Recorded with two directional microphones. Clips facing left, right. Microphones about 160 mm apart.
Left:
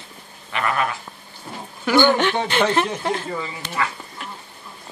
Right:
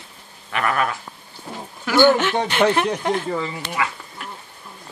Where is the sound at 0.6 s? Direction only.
20° left (ahead or behind).